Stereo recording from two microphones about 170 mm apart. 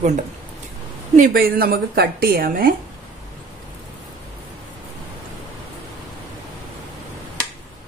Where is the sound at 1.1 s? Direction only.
55° right (ahead or behind).